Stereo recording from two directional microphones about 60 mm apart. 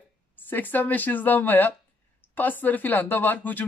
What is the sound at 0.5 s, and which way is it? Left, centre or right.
Speech, left.